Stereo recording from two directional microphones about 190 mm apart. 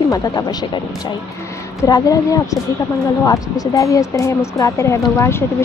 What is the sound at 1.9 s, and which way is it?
A woman's voice, 20° left (ahead or behind).